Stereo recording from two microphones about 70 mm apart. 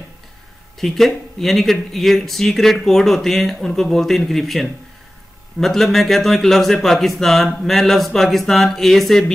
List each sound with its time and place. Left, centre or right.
0.7 s speech: centre